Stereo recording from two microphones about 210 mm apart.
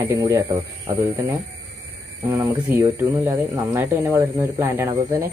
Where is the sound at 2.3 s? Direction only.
10° right (ahead or behind).